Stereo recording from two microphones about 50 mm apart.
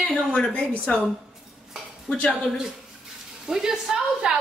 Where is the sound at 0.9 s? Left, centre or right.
Left.